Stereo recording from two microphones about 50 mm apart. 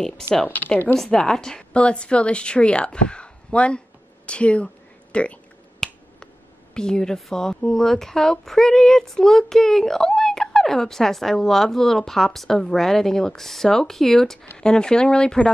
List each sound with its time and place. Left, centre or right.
0.5 s speech: left
0.9 s a woman's voice: centre
5.8 s finger snapping: centre
6.7 s speech: centre